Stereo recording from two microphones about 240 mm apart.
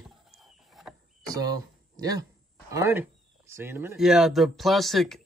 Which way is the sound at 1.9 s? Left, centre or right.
Centre.